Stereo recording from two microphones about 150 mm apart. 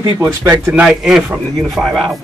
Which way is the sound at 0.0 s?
20° right (ahead or behind).